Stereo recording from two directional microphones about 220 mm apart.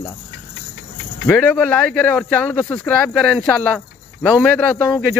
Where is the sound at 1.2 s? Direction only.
5° left (ahead or behind).